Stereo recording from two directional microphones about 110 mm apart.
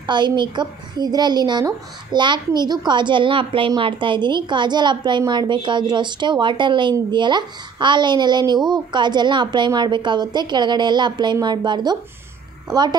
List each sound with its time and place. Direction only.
0.0 s a woman's voice: 45° right (ahead or behind)